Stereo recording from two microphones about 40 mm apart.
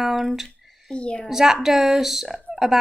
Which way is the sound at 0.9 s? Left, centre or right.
Left.